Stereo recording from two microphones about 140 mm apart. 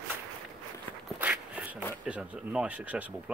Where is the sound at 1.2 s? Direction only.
10° right (ahead or behind).